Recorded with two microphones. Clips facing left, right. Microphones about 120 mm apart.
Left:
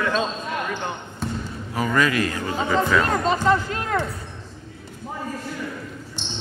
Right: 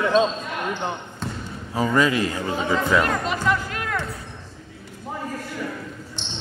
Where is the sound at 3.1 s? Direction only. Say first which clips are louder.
Left 4 dB; 30° left (ahead or behind).